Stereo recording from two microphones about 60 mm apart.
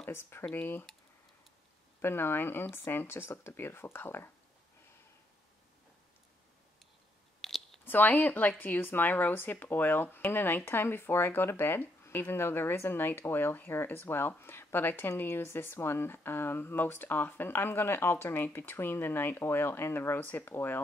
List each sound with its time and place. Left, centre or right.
0.1 s speech: left
2.0 s speech: left
7.4 s a sound: centre
7.8 s speech: left